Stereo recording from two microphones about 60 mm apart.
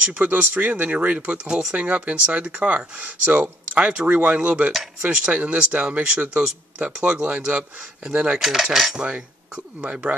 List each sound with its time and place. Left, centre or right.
0.0 s speech: right
8.4 s cutlery: centre
9.8 s speech: right